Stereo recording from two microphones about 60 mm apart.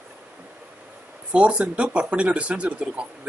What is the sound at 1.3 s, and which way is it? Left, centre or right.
A man's voice, right.